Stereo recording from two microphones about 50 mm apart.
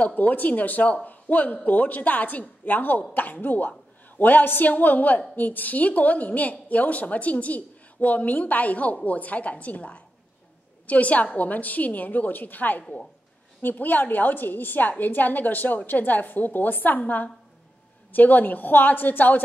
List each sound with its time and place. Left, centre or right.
0.0 s a woman's voice: left